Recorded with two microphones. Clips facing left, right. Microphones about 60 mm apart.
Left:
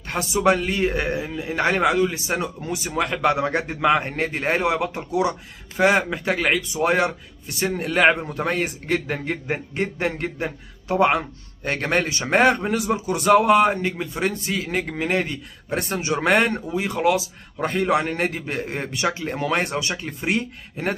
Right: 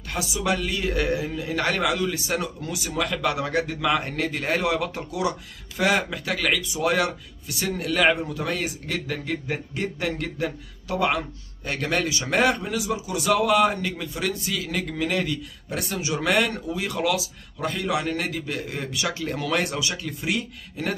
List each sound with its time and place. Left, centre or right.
0.1 s speech: left